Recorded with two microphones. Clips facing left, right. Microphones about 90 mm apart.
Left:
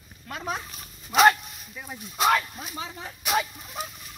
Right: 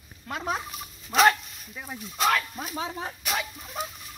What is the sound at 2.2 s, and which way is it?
Speech, 15° left (ahead or behind).